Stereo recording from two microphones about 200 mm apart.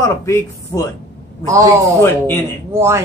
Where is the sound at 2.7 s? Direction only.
15° right (ahead or behind).